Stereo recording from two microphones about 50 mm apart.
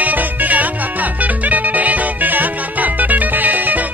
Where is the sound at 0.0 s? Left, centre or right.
Right.